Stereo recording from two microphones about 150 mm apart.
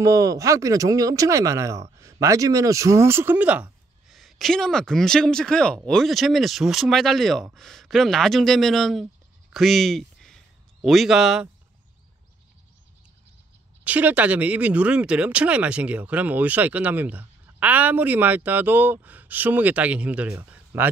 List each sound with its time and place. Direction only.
0.0 s speech: 20° right (ahead or behind); by 9.0 s centre (ahead or behind)
9.5 s a sound: centre (ahead or behind)
13.8 s speech: 10° right (ahead or behind)